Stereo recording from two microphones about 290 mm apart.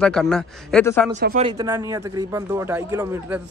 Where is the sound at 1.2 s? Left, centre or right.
Right.